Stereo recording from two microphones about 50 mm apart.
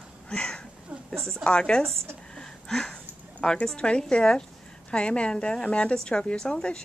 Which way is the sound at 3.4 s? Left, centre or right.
Centre.